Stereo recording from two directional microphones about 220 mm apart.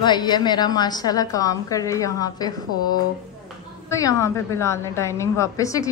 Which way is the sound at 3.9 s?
15° left (ahead or behind).